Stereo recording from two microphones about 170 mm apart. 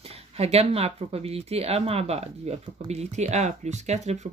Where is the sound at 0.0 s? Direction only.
35° right (ahead or behind).